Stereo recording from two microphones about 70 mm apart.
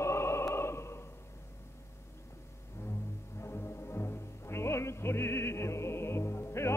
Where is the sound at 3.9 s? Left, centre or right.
Left.